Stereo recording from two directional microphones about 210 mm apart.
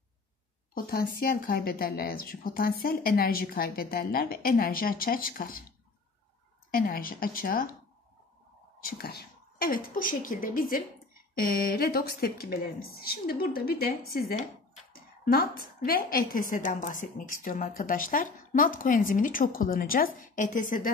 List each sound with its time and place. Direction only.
0.7 s speech: 45° left (ahead or behind)
6.7 s speech: 45° left (ahead or behind)
8.8 s a woman's voice: 50° left (ahead or behind)